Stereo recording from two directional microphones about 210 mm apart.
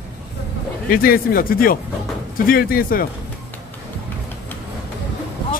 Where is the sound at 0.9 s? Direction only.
45° left (ahead or behind).